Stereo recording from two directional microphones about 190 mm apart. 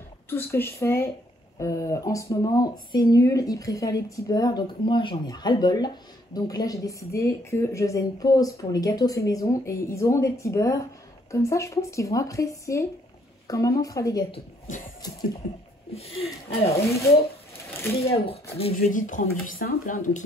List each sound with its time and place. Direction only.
0.3 s a woman's voice: 10° left (ahead or behind)
14.7 s speech: 40° left (ahead or behind)
15.9 s speech: 30° left (ahead or behind)
16.8 s a woman's voice: 15° left (ahead or behind)
18.1 s speech: 30° left (ahead or behind)
18.8 s speech: 45° left (ahead or behind)